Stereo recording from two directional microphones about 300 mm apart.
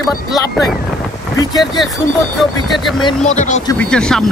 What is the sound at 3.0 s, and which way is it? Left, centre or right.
Speech, left.